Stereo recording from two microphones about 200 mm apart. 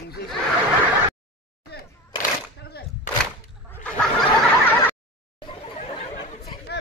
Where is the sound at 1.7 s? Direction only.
55° left (ahead or behind).